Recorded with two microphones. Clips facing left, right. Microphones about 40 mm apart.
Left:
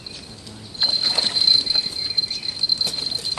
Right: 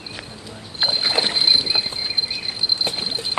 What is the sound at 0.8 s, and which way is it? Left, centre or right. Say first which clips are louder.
Rowboat: right 2 dB; right.